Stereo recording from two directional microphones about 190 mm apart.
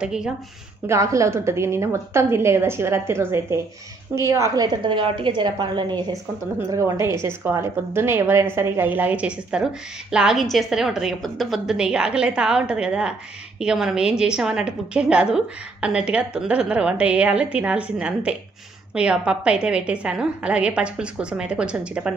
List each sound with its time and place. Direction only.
0.0 s a woman's voice: 5° right (ahead or behind)
0.8 s a woman's voice: 15° right (ahead or behind)